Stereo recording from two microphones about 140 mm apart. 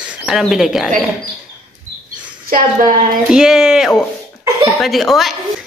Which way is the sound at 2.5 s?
70° right (ahead or behind).